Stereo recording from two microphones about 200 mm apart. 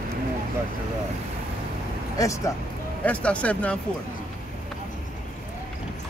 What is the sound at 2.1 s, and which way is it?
Speech, 15° left (ahead or behind).